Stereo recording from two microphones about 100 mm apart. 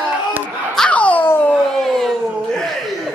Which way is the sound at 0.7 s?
10° left (ahead or behind).